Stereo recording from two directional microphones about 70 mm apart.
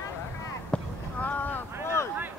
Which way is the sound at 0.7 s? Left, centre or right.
Left.